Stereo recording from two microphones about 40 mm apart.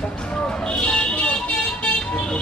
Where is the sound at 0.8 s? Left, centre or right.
Left.